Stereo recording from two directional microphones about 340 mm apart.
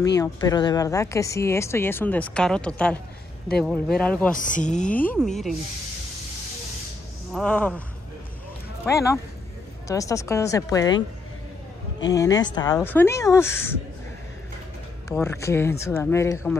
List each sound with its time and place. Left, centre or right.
0.0 s speech: centre
4.4 s speech: left
4.9 s speech: centre
7.3 s speech: centre
8.9 s speech: centre
15.0 s speech: centre